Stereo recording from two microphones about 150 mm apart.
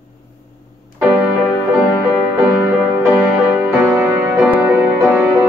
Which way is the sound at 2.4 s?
15° right (ahead or behind).